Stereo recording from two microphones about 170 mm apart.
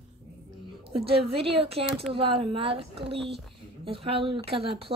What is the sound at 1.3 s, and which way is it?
Speech, 35° right (ahead or behind).